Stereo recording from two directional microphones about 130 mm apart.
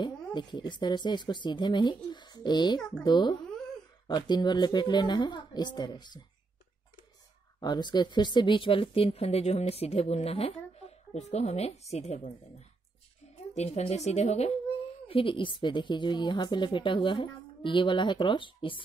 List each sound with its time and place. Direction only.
0.0 s a woman's voice: 35° left (ahead or behind)
7.6 s speech: 35° left (ahead or behind); by 12.4 s 65° left (ahead or behind)
13.6 s speech: 55° left (ahead or behind)
15.0 s a woman's voice: 45° left (ahead or behind)